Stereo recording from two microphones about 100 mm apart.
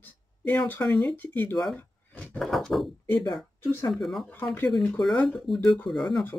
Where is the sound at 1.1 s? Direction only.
20° left (ahead or behind).